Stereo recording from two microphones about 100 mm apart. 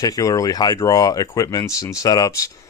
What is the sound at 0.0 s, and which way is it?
Speech, 35° left (ahead or behind).